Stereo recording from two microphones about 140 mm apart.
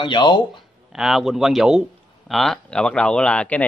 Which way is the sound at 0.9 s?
Centre (ahead or behind).